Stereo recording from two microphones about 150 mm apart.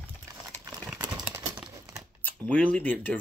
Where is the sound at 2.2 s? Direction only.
10° left (ahead or behind).